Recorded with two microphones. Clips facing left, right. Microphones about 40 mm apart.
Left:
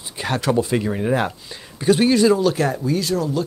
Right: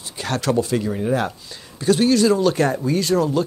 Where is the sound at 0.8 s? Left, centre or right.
Left.